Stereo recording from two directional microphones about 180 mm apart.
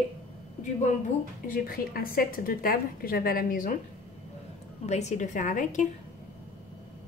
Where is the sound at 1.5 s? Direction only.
55° left (ahead or behind).